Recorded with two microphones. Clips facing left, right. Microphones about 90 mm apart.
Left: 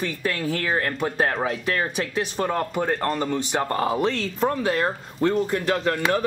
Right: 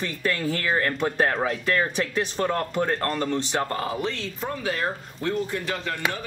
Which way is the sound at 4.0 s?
40° left (ahead or behind).